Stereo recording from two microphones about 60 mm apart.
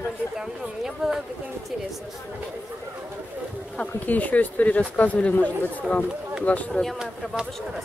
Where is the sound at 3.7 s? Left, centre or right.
Left.